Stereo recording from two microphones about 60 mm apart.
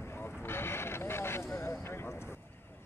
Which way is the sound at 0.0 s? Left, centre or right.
Left.